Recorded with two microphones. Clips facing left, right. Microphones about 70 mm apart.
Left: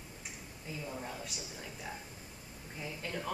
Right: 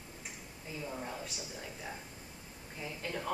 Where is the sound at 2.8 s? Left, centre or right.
Centre.